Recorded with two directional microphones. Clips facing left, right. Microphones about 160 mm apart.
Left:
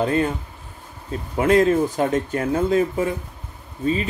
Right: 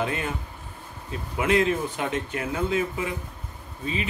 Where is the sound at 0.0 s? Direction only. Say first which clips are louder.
Left 8 dB; 35° left (ahead or behind).